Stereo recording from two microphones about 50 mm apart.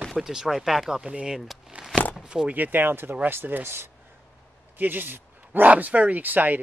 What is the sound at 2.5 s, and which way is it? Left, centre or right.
Speech, right.